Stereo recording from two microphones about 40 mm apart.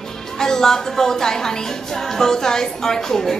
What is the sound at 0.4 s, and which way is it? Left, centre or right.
Speech, centre.